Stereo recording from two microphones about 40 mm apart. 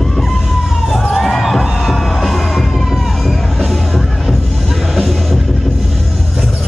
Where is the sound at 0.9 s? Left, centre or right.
Centre.